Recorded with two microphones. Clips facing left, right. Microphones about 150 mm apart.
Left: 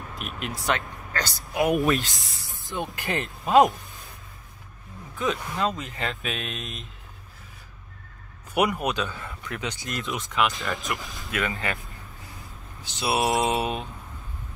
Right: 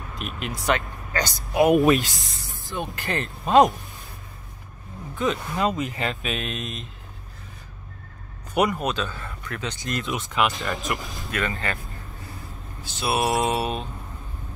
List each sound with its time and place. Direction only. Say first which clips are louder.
0.2 s speech: right 2 dB; centre (ahead or behind)
1.1 s speech: right 5 dB; 15° right (ahead or behind)
2.3 s a sound: right 3 dB; 45° right (ahead or behind)
2.6 s speech: even; 20° left (ahead or behind)
3.4 s speech: right 1 dB; 5° left (ahead or behind)
5.2 s speech: right 2 dB; 5° right (ahead or behind)
8.5 s speech: right 1 dB; 10° left (ahead or behind)
12.8 s mantra: right 1 dB; 20° left (ahead or behind)